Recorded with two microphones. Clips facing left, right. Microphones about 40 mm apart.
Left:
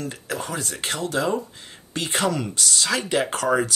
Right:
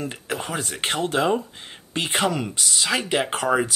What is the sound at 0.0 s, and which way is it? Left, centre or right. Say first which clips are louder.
Speech: right 1 dB; right.